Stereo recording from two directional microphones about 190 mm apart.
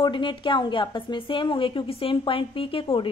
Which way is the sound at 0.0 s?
25° left (ahead or behind).